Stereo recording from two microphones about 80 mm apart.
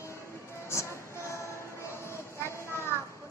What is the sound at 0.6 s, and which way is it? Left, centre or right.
Music, left.